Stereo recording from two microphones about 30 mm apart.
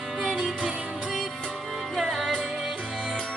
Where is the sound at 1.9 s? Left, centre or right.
Centre.